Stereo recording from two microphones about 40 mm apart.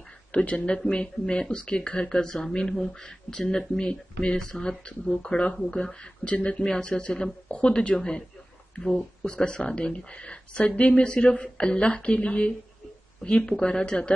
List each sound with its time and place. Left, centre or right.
0.3 s a woman's voice: left
6.2 s speech: left
6.6 s a woman's voice: centre
7.4 s a woman's voice: left